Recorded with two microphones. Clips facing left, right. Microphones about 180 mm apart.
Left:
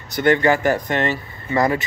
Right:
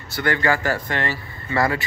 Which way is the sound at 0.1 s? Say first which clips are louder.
Left 5 dB; 20° left (ahead or behind).